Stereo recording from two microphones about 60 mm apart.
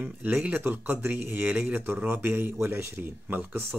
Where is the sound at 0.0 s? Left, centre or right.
Right.